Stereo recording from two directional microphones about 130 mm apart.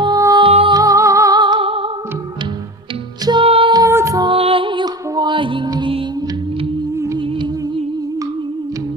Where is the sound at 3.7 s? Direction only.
25° right (ahead or behind).